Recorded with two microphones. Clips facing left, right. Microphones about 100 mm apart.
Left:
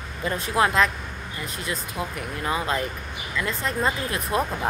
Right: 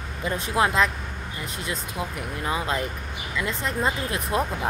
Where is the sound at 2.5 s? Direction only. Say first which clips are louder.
Left 1 dB; 15° right (ahead or behind).